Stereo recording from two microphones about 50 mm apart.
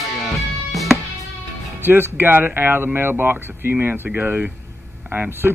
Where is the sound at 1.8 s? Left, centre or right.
Right.